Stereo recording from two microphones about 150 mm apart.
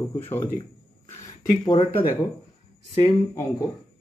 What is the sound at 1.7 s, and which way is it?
Speech, 35° left (ahead or behind).